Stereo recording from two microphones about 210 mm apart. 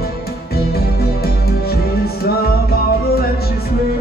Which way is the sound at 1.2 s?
45° left (ahead or behind).